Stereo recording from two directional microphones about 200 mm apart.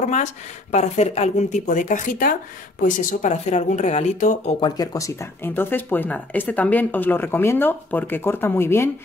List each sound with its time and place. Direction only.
0.1 s speech: 35° left (ahead or behind)
4.6 s speech: 20° left (ahead or behind)